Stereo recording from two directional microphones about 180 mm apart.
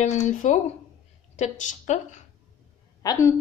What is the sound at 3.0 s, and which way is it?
Speech, 20° left (ahead or behind).